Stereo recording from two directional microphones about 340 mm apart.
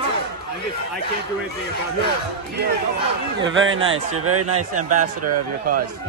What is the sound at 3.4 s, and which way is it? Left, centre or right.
Speech, right.